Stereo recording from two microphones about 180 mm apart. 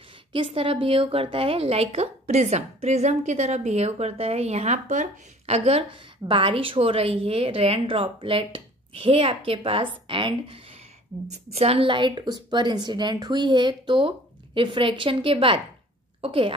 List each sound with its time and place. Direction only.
0.3 s a woman's voice: 30° right (ahead or behind)